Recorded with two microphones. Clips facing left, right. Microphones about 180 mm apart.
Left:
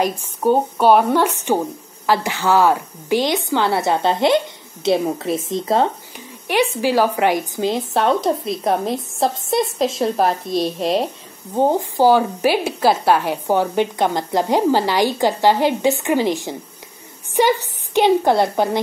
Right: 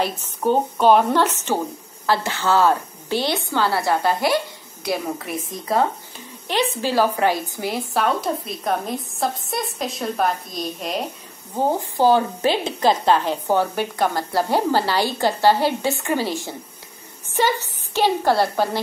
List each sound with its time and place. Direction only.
0.0 s a woman's voice: 10° left (ahead or behind)
6.4 s a woman's voice: 15° left (ahead or behind); by 11.1 s 30° left (ahead or behind)
11.5 s a woman's voice: 15° left (ahead or behind)